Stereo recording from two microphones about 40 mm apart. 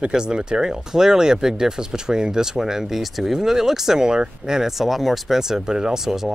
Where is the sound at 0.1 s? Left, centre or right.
Right.